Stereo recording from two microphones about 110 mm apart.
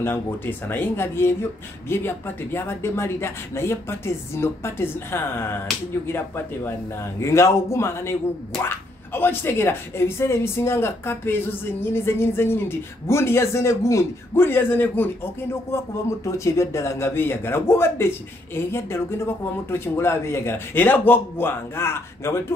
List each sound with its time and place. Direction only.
0.0 s speech: 20° left (ahead or behind)